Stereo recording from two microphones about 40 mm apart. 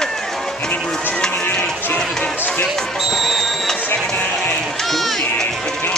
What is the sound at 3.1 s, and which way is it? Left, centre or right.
Music, centre.